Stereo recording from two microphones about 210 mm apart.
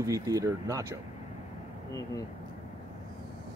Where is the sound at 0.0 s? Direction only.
15° right (ahead or behind).